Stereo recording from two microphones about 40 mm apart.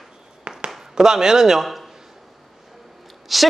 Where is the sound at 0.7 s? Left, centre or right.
Centre.